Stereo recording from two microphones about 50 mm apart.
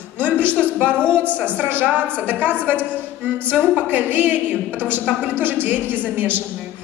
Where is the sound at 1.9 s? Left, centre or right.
Left.